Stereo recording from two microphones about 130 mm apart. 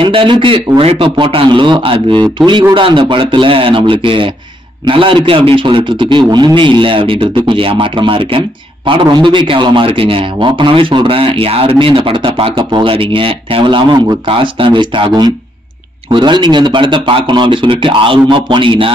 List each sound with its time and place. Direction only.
0.0 s a man's voice: 40° right (ahead or behind)